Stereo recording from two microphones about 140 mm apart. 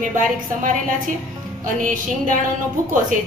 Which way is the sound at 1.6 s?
70° right (ahead or behind).